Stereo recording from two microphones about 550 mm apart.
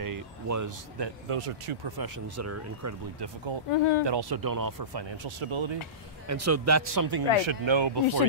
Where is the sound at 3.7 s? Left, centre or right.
Left.